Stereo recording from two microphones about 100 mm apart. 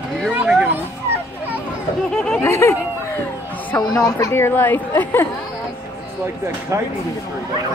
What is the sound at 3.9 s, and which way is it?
Speech, 30° left (ahead or behind).